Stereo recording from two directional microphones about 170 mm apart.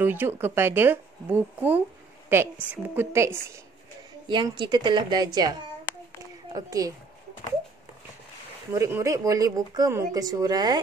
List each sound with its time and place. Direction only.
0.0 s speech: 10° right (ahead or behind)
4.3 s a woman's voice: 25° right (ahead or behind)
8.7 s a woman's voice: 15° right (ahead or behind)